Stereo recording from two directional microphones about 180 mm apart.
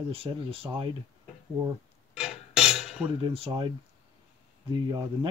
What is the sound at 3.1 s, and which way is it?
Speech, 30° right (ahead or behind).